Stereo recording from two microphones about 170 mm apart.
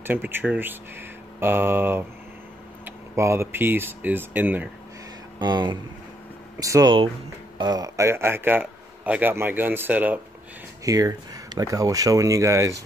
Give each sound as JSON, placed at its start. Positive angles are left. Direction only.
{"t": 0.0, "sound": "a man's voice", "side_deg": -10}
{"t": 5.4, "sound": "a man's voice", "side_deg": -25}
{"t": 10.8, "sound": "speech", "side_deg": -20}